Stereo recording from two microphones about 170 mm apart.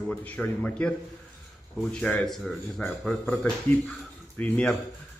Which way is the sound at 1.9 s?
5° left (ahead or behind).